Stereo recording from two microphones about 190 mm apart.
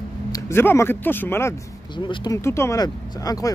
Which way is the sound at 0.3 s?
15° left (ahead or behind).